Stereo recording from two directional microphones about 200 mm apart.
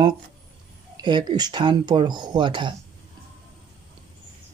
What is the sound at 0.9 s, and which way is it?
Speech, 20° right (ahead or behind).